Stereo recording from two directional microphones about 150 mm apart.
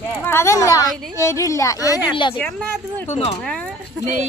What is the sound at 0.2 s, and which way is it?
A woman's voice, 15° left (ahead or behind).